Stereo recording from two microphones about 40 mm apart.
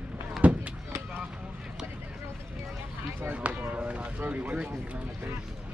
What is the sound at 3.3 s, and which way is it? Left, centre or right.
Run, right.